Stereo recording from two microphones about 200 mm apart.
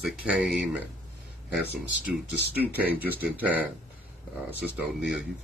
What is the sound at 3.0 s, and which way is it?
Speech, 10° right (ahead or behind).